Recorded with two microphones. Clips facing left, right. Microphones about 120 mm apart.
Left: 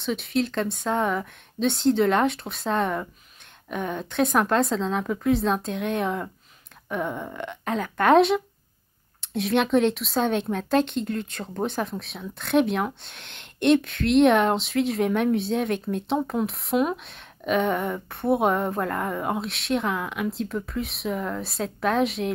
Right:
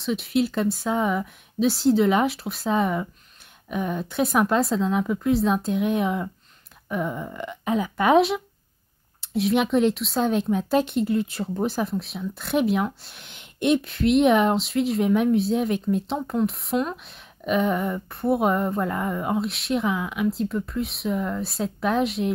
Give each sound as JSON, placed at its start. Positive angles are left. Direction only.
{"t": 0.0, "sound": "speech", "side_deg": 0}